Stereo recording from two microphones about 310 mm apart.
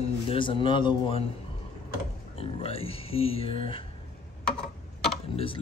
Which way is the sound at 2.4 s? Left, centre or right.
Centre.